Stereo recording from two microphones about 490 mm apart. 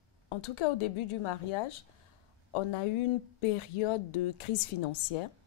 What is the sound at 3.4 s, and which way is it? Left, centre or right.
Speech, left.